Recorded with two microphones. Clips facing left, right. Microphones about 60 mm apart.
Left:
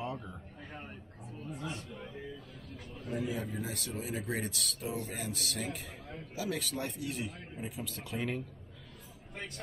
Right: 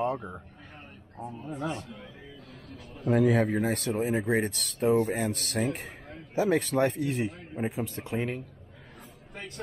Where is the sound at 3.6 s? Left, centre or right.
Right.